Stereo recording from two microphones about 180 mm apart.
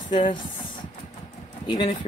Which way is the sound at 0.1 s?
25° left (ahead or behind).